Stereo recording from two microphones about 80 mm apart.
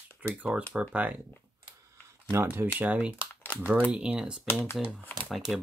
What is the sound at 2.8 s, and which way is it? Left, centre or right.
Speech, centre.